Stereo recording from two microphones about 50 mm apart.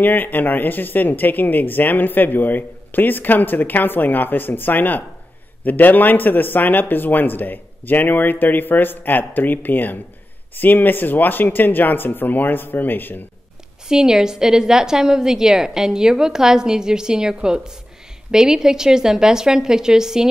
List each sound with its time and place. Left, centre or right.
0.0 s speech: left
13.8 s a woman's voice: centre